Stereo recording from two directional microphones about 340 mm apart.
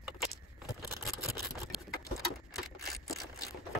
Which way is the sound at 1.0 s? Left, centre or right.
Centre.